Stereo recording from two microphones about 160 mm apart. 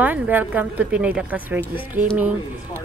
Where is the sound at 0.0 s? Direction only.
10° right (ahead or behind).